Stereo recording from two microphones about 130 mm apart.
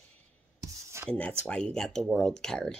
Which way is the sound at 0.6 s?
20° right (ahead or behind).